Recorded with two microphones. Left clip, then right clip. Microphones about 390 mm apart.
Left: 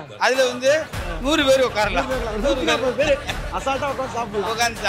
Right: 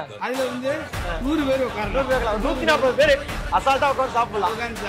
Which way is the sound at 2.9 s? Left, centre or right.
Right.